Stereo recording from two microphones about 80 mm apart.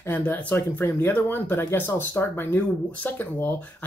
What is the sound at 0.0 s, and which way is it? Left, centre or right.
Speech, left.